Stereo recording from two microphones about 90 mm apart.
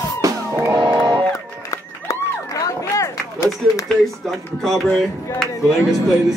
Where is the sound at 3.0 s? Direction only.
35° left (ahead or behind).